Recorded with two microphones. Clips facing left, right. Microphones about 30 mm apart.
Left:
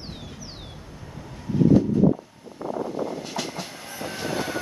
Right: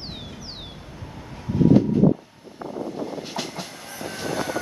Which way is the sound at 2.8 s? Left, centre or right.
Centre.